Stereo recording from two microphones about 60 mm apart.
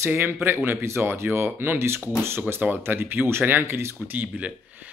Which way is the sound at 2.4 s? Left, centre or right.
Right.